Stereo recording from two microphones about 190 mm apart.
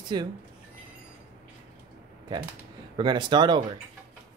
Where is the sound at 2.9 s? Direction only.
25° right (ahead or behind).